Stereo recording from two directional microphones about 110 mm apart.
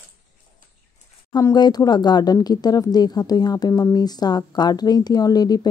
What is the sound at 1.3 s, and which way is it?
Speech, 40° left (ahead or behind).